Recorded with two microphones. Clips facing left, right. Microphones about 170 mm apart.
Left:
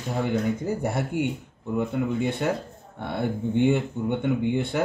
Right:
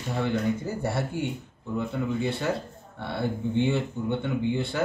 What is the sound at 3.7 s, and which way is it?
Speech, 15° left (ahead or behind).